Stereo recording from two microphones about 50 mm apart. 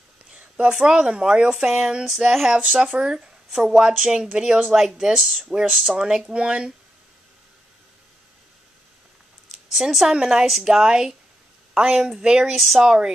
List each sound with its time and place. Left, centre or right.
0.3 s speech: right
5.2 s speech: centre
5.5 s speech: centre
9.5 s a sound: centre
10.1 s speech: centre
12.5 s speech: centre
12.8 s speech: centre